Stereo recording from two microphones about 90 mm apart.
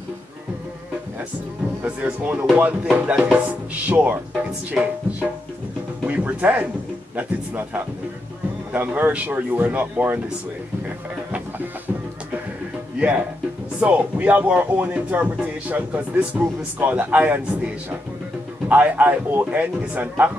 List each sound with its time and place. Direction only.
1.9 s speech: 15° right (ahead or behind)
13.7 s speech: 15° right (ahead or behind)
18.7 s speech: 20° right (ahead or behind)